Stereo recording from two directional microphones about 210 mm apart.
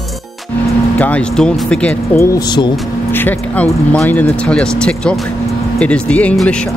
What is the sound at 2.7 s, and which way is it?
Speech, 5° left (ahead or behind).